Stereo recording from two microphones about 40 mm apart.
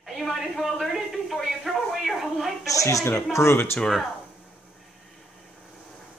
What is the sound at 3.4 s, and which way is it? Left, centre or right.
Speech, left.